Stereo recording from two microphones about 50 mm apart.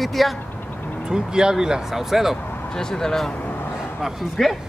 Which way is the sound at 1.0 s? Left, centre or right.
Centre.